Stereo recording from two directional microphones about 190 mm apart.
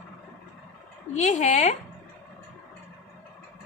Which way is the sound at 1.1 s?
40° left (ahead or behind).